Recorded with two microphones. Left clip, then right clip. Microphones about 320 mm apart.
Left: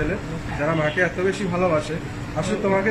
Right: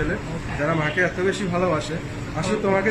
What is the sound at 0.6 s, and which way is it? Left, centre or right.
A man's voice, centre.